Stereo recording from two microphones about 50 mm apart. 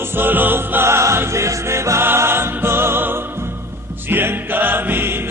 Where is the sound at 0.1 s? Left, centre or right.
Right.